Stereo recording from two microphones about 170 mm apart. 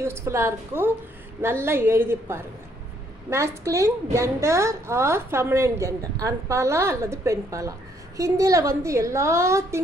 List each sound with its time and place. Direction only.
0.0 s a woman's voice: 15° right (ahead or behind)